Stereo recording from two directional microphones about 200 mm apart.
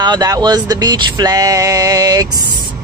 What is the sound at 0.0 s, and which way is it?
Male singing, 20° right (ahead or behind).